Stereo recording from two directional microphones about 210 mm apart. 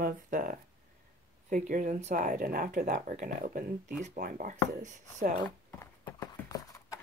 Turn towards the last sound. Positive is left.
turn(degrees=15)  # may be behind; listen again after turning